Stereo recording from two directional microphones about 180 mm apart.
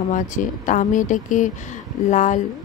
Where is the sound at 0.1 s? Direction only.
45° left (ahead or behind).